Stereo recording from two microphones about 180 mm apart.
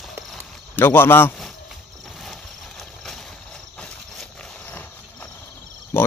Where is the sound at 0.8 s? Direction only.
10° left (ahead or behind).